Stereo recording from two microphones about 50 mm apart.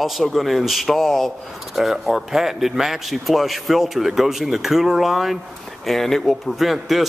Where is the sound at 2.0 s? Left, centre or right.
Centre.